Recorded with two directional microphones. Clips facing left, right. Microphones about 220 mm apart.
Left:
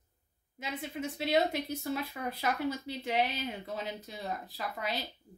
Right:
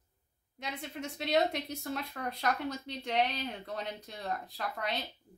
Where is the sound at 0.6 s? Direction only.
5° left (ahead or behind).